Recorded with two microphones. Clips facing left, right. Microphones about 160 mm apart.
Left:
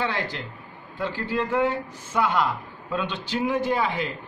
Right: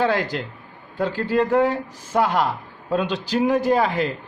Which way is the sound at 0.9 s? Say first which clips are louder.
Right 6 dB; 40° right (ahead or behind).